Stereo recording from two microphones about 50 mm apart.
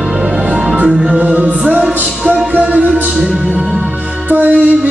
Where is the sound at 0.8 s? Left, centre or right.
Right.